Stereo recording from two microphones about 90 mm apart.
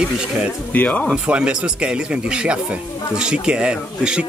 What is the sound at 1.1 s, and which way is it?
Speech, 10° right (ahead or behind).